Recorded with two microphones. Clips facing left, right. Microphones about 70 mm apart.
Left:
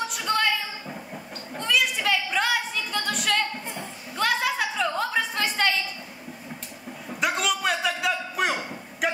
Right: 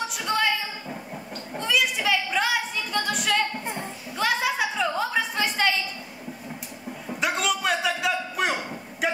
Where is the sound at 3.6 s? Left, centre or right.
Right.